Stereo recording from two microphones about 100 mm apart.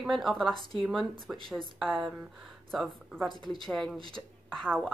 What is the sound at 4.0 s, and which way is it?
Speech, 60° right (ahead or behind).